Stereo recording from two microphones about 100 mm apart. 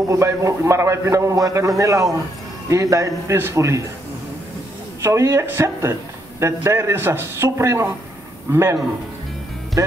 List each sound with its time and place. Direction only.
0.1 s a man's voice: 30° right (ahead or behind)
5.0 s a man's voice: 30° right (ahead or behind)